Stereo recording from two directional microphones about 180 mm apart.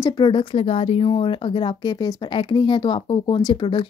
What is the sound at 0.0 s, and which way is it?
Speech, 25° left (ahead or behind).